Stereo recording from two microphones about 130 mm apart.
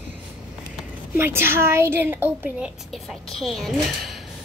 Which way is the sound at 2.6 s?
Centre (ahead or behind).